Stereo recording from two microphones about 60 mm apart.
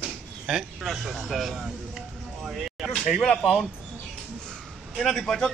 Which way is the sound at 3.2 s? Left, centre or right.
Centre.